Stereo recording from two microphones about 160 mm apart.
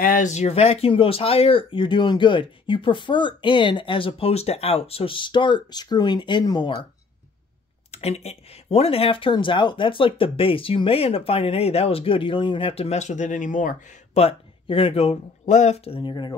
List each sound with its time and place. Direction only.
0.0 s speech: 55° left (ahead or behind); by 6.9 s 30° left (ahead or behind)
7.9 s speech: 40° left (ahead or behind)
14.2 s speech: 35° left (ahead or behind)